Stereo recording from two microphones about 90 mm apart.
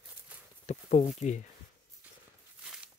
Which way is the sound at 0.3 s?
15° right (ahead or behind).